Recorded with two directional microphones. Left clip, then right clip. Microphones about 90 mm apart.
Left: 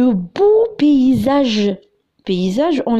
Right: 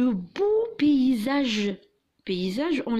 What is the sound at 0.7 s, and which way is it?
Speech, 55° left (ahead or behind).